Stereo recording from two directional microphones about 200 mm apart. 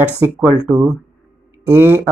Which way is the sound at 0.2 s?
15° right (ahead or behind).